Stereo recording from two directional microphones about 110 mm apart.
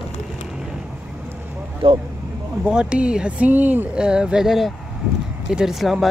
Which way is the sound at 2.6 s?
10° right (ahead or behind).